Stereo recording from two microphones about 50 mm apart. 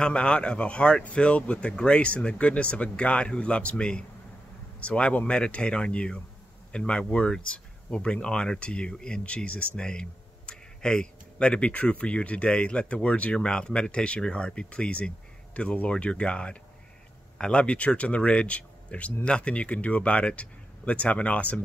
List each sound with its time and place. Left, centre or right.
0.0 s speech: centre